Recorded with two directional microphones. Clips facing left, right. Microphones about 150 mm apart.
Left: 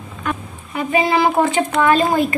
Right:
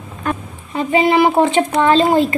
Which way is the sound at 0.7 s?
25° right (ahead or behind).